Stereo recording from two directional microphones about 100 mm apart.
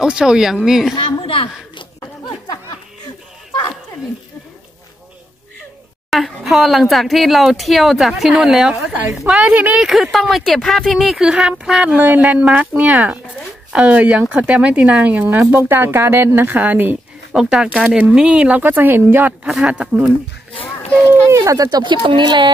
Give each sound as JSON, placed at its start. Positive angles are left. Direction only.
{"t": 0.0, "sound": "speech", "side_deg": -10}
{"t": 0.9, "sound": "a sound", "side_deg": 65}
{"t": 6.0, "sound": "speech", "side_deg": 0}
{"t": 9.4, "sound": "speech", "side_deg": -15}
{"t": 9.8, "sound": "speech", "side_deg": 0}
{"t": 17.4, "sound": "speech", "side_deg": -5}
{"t": 21.1, "sound": "speech", "side_deg": -30}